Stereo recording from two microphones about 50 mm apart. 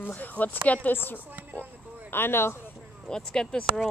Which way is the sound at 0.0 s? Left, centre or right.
Left.